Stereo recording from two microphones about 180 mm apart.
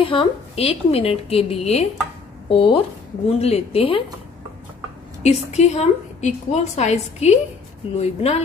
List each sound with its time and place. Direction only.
0.0 s a woman's voice: 30° left (ahead or behind)
5.2 s a woman's voice: 40° left (ahead or behind)